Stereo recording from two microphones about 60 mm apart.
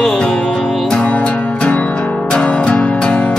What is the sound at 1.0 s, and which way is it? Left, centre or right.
Music, left.